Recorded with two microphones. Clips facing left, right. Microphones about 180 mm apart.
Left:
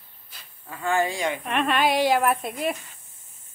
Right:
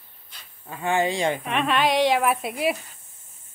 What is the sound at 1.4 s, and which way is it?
A woman's voice, centre (ahead or behind).